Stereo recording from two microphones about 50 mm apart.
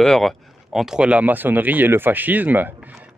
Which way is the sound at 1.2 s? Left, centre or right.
Right.